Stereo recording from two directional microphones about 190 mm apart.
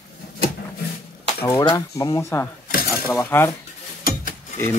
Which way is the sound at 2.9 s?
10° left (ahead or behind).